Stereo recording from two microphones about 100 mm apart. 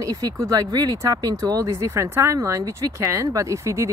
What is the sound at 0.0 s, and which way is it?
Speech, 35° right (ahead or behind).